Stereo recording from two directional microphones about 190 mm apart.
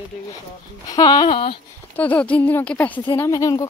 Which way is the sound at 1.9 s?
10° left (ahead or behind).